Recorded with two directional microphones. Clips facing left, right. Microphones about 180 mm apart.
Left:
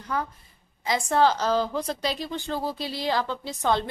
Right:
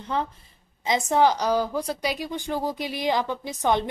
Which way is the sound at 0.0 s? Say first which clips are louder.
Right 2 dB; 25° right (ahead or behind).